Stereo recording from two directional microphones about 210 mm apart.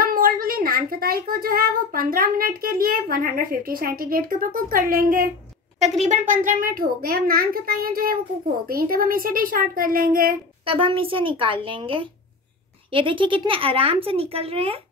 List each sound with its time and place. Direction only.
0.0 s a child's voice: 40° right (ahead or behind)
10.6 s speech: 25° right (ahead or behind)